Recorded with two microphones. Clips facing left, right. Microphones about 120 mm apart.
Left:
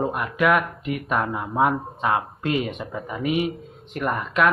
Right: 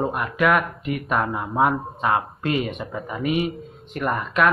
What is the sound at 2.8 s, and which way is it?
Speech, centre (ahead or behind).